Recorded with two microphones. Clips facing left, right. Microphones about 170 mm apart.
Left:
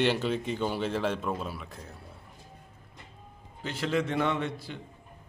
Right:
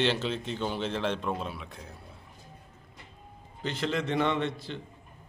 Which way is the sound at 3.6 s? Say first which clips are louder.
Left 1 dB; 10° left (ahead or behind).